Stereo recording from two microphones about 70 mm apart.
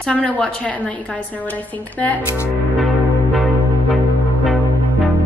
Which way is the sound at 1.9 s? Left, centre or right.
Left.